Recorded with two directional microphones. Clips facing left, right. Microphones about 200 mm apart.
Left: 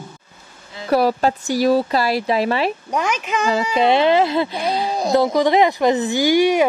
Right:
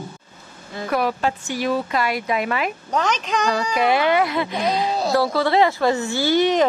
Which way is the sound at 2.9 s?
10° left (ahead or behind).